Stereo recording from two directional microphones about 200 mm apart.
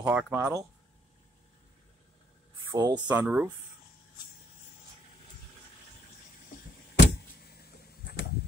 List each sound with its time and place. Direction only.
0.0 s speech: 5° right (ahead or behind)
2.7 s speech: 20° right (ahead or behind)
3.1 s speech: 5° right (ahead or behind)
7.0 s a sound: 55° left (ahead or behind)